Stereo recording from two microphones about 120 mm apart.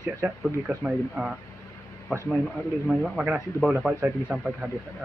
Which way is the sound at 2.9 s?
5° right (ahead or behind).